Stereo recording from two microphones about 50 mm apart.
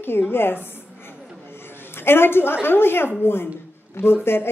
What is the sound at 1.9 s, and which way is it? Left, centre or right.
Speech, left.